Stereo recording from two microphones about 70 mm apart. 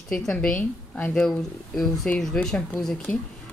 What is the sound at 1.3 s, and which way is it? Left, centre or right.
Speech, centre.